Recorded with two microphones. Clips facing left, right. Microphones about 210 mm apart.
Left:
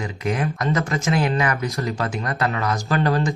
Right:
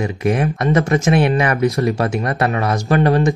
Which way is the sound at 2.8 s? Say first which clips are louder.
Right 7 dB; 20° right (ahead or behind).